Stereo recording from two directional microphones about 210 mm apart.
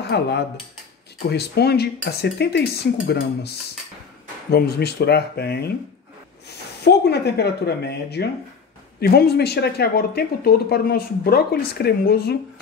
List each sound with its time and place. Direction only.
0.1 s speech: 55° left (ahead or behind)